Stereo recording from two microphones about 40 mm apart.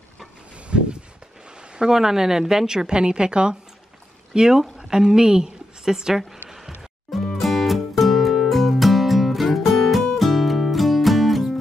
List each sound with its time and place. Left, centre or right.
0.7 s a sound: right
1.6 s a woman's voice: centre
7.3 s music: centre